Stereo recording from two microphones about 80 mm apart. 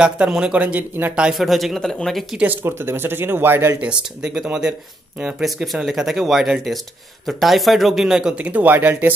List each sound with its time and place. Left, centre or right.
0.0 s speech: centre
1.4 s speech: centre
2.3 s speech: right
3.8 s speech: centre
8.4 s speech: centre